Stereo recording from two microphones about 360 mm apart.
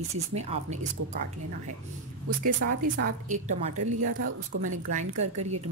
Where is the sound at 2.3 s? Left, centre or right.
Right.